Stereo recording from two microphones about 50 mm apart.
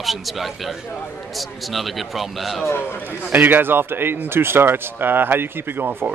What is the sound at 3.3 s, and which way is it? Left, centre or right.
Speech, right.